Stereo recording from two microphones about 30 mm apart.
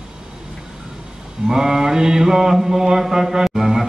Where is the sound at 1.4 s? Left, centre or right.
Centre.